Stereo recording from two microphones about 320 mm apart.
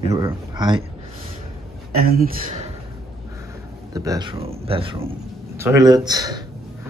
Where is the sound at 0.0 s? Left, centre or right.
Centre.